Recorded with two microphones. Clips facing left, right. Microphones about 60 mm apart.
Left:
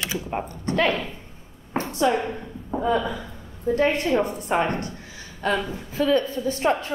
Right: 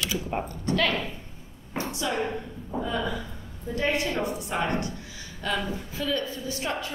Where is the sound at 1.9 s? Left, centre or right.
Left.